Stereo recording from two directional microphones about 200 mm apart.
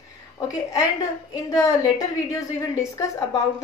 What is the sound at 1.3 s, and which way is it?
A woman's voice, 15° left (ahead or behind).